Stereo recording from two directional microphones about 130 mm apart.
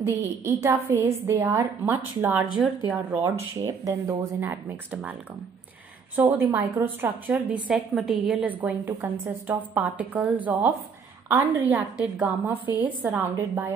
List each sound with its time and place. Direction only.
0.0 s a woman's voice: 20° right (ahead or behind)
6.1 s a woman's voice: 15° right (ahead or behind)